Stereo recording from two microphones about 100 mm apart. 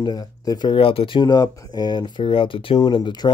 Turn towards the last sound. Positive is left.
turn(degrees=45)  # may be behind; listen again after turning